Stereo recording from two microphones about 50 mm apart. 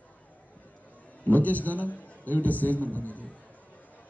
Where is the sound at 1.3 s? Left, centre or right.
Left.